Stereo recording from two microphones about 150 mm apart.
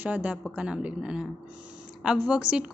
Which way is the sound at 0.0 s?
10° right (ahead or behind).